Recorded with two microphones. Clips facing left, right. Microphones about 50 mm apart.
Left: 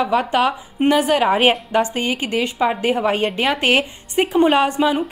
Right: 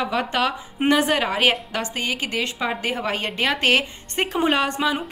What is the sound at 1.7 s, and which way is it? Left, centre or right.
A woman's voice, left.